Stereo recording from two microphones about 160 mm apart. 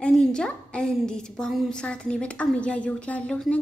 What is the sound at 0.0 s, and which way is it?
A woman's voice, 5° left (ahead or behind).